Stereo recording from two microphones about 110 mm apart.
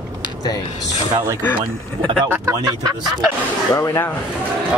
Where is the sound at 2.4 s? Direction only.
35° right (ahead or behind).